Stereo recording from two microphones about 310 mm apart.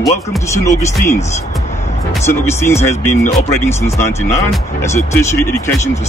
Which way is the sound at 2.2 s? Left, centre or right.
Centre.